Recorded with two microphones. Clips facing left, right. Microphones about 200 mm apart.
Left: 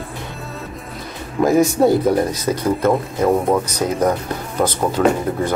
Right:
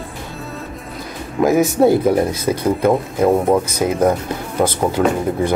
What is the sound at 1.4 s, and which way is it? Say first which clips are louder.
Speech: right 1 dB; 5° right (ahead or behind).